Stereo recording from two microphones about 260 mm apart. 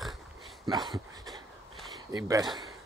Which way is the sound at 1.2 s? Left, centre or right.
Centre.